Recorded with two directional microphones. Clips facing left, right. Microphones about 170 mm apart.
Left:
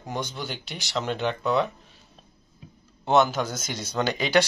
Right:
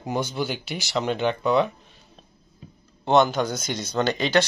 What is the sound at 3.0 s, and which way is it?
Speech, 5° left (ahead or behind).